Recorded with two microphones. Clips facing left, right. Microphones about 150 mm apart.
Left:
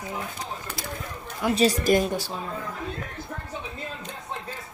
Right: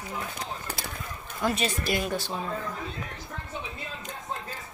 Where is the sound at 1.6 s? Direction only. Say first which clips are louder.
Left 8 dB; 40° left (ahead or behind).